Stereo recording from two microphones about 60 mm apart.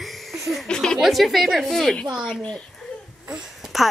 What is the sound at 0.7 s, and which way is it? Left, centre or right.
Chuckle, centre.